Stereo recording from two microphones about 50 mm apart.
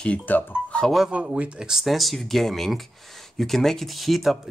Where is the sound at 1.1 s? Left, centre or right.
Right.